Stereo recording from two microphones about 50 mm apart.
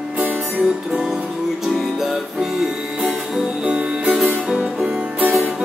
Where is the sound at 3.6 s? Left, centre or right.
Right.